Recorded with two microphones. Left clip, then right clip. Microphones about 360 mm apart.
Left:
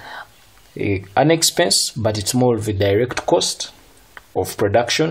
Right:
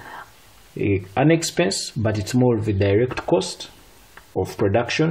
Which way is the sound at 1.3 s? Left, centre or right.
Centre.